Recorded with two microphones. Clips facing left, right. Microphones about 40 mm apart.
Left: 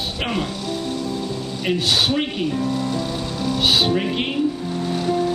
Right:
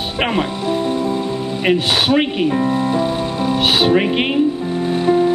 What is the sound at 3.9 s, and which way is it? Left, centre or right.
Speech, right.